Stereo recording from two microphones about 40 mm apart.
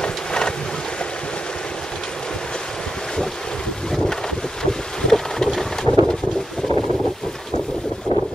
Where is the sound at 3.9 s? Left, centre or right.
Centre.